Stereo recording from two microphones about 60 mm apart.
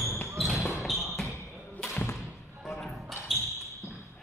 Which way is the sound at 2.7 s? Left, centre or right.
Centre.